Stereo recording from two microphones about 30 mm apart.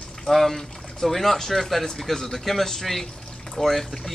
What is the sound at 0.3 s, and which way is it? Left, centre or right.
Speech, centre.